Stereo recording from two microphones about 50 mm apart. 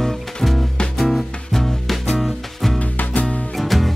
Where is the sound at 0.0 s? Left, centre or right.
Centre.